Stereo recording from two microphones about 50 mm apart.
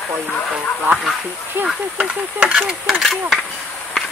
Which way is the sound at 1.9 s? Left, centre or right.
Right.